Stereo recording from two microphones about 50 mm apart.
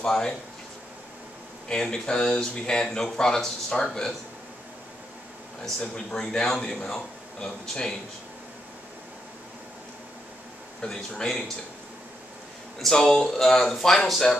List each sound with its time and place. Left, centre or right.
0.0 s speech: centre
1.7 s speech: centre
5.9 s speech: centre
10.9 s speech: centre
12.7 s speech: centre